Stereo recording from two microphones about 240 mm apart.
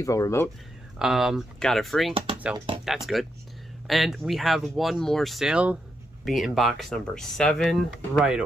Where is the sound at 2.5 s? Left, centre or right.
Right.